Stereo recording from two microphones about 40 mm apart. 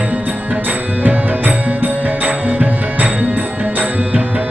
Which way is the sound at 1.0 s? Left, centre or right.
Right.